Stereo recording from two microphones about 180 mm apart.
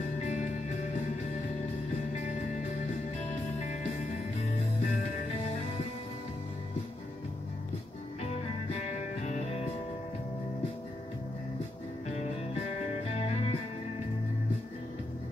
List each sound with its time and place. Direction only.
8.2 s music: 35° left (ahead or behind)
13.1 s music: 35° left (ahead or behind)